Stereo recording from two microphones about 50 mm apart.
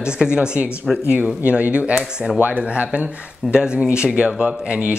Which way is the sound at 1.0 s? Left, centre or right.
Right.